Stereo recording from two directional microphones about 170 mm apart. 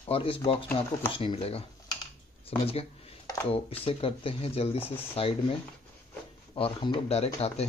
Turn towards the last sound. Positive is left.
turn(degrees=35)  # may be behind; listen again after turning